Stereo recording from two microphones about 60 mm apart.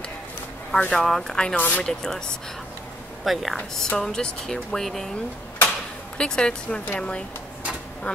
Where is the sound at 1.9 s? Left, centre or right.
Centre.